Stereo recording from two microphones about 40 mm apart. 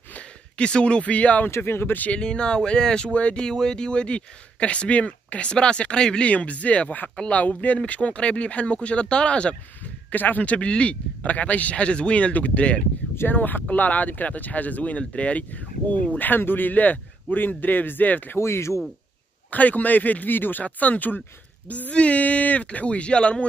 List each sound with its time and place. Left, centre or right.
0.6 s speech: left
1.5 s speech: left
2.1 s speech: left
3.4 s speech: centre; by 5.5 s left
5.5 s speech: left
6.2 s speech: left
10.1 s speech: left
13.3 s a man's voice: left
16.2 s a man's voice: left
18.3 s speech: left
19.5 s a man's voice: left